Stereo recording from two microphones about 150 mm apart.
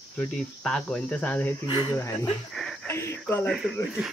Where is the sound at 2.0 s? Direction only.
15° left (ahead or behind).